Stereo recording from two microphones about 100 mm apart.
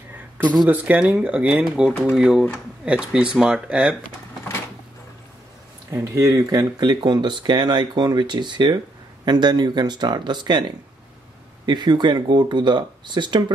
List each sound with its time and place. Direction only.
0.7 s speech: 15° right (ahead or behind)
5.9 s speech: 30° right (ahead or behind); by 10.6 s 50° right (ahead or behind)
11.6 s speech: 45° right (ahead or behind)